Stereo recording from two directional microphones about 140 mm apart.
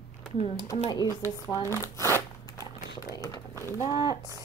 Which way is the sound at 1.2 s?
20° left (ahead or behind).